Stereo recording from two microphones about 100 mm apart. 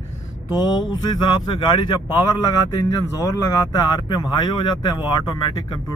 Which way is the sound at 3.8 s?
45° left (ahead or behind).